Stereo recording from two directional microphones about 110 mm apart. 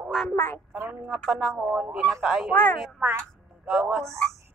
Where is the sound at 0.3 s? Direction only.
15° left (ahead or behind).